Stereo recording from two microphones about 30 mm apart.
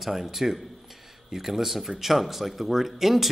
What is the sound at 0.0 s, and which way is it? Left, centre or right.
Speech, centre.